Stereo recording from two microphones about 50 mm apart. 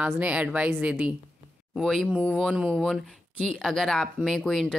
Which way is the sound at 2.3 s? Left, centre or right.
Right.